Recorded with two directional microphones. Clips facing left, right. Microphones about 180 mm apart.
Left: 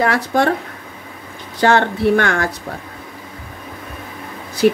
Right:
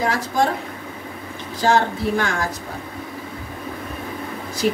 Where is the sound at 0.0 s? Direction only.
65° left (ahead or behind).